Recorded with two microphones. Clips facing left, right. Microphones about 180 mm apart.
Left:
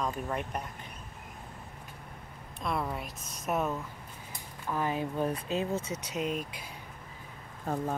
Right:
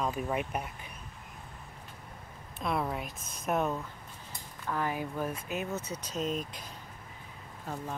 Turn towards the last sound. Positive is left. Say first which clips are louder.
# left 6 dB
turn(degrees=50)  # may be behind; listen again after turning